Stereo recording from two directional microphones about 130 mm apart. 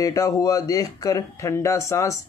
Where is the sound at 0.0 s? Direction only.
25° left (ahead or behind).